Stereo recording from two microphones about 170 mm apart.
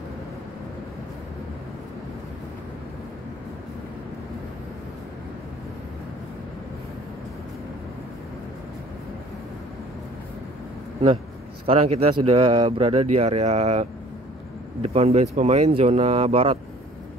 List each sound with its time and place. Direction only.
11.6 s speech: 35° right (ahead or behind)